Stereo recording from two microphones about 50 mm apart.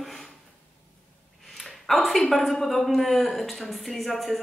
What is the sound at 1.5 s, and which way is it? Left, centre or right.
A woman's voice, centre.